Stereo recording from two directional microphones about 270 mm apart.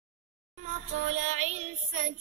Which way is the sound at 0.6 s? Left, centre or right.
Right.